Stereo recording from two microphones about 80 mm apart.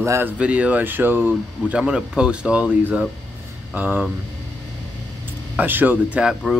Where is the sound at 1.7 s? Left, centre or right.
Centre.